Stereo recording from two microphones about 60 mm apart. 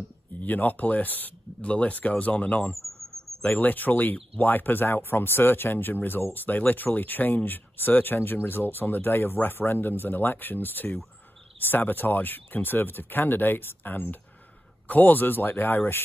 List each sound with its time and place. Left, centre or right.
0.4 s speech: left